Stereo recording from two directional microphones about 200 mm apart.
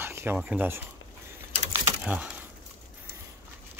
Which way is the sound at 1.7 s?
5° right (ahead or behind).